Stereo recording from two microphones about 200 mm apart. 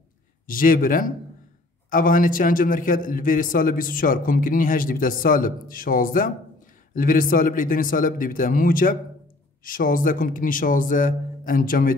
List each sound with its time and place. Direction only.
0.5 s a man's voice: 45° left (ahead or behind)